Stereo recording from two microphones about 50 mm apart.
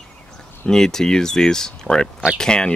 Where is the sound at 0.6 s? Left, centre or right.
Centre.